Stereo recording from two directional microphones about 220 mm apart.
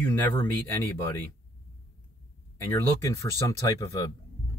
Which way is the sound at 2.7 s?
10° left (ahead or behind).